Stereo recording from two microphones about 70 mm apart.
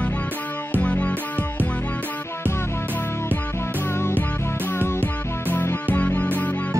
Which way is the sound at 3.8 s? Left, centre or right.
Left.